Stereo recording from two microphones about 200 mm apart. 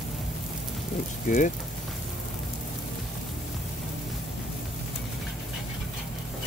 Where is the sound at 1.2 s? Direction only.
40° left (ahead or behind).